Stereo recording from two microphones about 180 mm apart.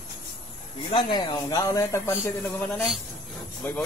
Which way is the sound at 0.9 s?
20° left (ahead or behind).